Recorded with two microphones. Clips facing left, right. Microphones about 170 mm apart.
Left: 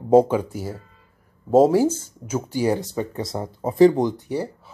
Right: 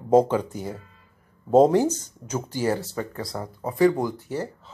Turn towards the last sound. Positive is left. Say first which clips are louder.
# left 3 dB
turn(degrees=15)  # may be behind; listen again after turning